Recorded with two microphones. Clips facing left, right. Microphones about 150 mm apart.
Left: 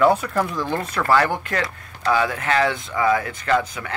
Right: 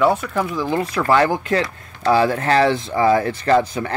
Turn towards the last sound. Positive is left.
turn(degrees=-35)  # may be behind; listen again after turning